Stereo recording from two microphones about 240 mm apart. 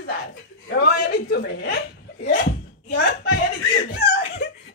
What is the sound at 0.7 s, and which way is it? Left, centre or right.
Hiccup, left.